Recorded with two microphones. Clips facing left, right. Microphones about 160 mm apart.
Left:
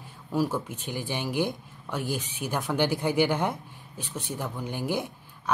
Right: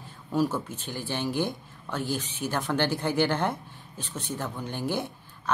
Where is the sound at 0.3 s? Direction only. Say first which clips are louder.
Right 1 dB; 10° left (ahead or behind).